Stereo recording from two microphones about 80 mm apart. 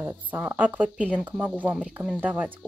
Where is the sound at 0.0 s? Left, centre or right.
Right.